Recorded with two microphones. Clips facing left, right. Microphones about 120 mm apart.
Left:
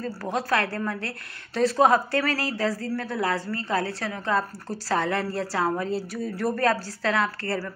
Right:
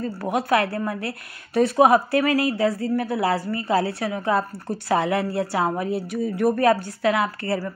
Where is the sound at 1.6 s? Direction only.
20° right (ahead or behind).